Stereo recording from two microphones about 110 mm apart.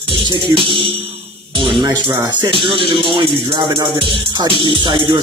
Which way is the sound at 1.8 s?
35° right (ahead or behind).